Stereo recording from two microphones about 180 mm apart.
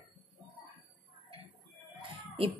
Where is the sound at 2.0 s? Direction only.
30° right (ahead or behind).